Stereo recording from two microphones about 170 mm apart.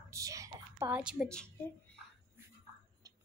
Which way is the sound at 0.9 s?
5° right (ahead or behind).